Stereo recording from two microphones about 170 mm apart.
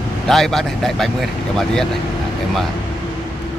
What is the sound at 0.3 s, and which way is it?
Speech, centre (ahead or behind).